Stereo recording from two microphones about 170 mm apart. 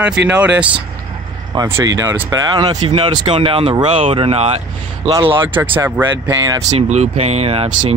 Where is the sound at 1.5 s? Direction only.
20° right (ahead or behind); by 4.6 s 35° right (ahead or behind).